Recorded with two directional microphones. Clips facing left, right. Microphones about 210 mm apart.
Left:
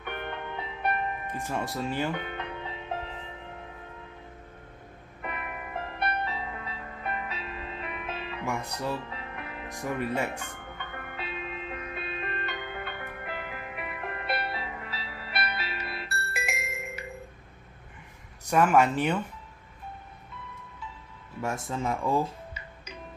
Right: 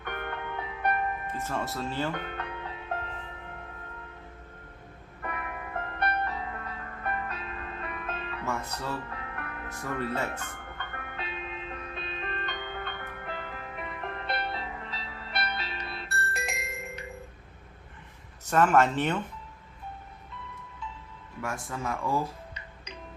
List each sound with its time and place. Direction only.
0.0 s music: 10° left (ahead or behind)
5.2 s music: 10° left (ahead or behind)
11.1 s music: centre (ahead or behind)
18.4 s speech: 10° left (ahead or behind)
21.4 s speech: 25° left (ahead or behind)